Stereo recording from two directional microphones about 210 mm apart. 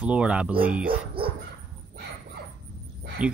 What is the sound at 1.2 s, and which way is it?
Dog, 25° right (ahead or behind).